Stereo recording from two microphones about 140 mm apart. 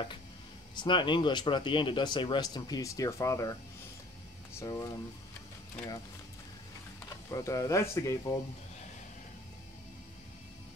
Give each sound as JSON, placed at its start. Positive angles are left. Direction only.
{"t": 0.7, "sound": "speech", "side_deg": 35}
{"t": 4.6, "sound": "speech", "side_deg": 25}
{"t": 7.2, "sound": "speech", "side_deg": 25}